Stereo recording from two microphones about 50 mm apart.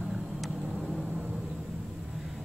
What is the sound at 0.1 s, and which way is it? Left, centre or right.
Vehicle, centre.